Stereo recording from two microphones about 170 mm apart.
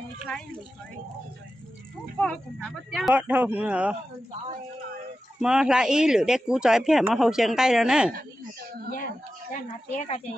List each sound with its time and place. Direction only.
0.2 s speech: 5° left (ahead or behind)
2.1 s speech: 5° left (ahead or behind)
5.4 s speech: 5° right (ahead or behind)
8.9 s speech: 50° left (ahead or behind)